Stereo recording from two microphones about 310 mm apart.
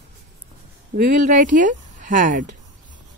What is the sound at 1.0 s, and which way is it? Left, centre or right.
A woman's voice, right.